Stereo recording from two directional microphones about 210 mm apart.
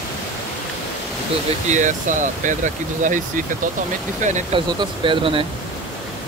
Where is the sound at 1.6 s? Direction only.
35° right (ahead or behind).